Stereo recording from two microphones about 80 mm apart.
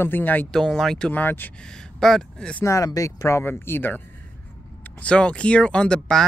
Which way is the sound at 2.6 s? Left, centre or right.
Left.